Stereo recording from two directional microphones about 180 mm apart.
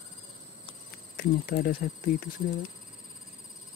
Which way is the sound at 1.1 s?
55° left (ahead or behind).